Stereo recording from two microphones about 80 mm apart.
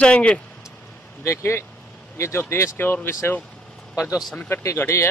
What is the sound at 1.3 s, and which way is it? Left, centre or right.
Speech, left.